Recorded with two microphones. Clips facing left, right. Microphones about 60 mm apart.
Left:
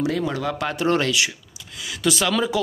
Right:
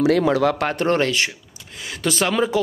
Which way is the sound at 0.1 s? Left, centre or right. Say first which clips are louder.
Right 7 dB; right.